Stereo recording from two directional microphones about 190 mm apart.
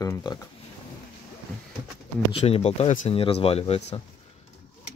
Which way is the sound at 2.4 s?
30° left (ahead or behind).